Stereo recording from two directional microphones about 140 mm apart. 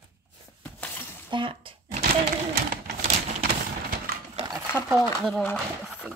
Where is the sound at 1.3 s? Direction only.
40° right (ahead or behind).